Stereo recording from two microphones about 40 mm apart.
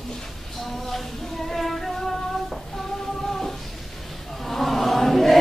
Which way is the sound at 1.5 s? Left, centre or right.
Centre.